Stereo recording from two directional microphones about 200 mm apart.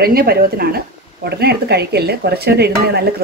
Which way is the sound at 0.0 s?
50° right (ahead or behind).